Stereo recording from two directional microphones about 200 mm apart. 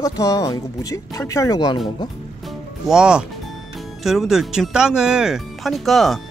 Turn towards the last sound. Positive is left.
turn(degrees=0)  # may be behind; listen again after turning